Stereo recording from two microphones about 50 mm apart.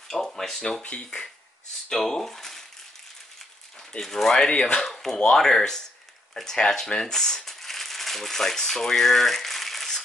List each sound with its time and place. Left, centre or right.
0.1 s speech: centre
0.8 s speech: left
1.9 s speech: centre
4.0 s speech: centre
4.8 s speech: centre